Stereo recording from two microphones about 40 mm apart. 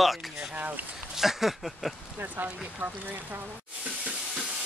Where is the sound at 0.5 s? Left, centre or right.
Right.